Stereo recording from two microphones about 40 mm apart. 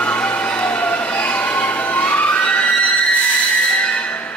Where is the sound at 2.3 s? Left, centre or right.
Left.